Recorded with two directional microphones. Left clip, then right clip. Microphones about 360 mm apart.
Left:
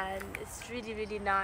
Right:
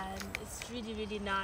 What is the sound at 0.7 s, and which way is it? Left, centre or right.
Speech, left.